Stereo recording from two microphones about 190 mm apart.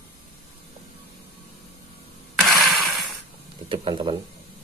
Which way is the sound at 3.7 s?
30° right (ahead or behind).